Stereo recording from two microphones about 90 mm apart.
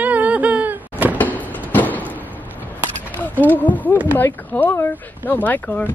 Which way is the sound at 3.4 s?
20° left (ahead or behind).